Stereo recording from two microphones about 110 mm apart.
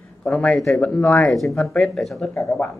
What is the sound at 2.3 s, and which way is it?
Speech, 25° left (ahead or behind).